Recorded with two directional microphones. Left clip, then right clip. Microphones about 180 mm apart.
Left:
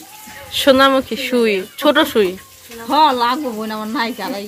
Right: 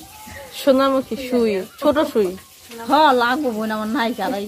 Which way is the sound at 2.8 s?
55° right (ahead or behind).